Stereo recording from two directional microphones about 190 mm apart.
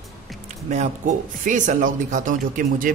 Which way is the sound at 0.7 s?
40° right (ahead or behind).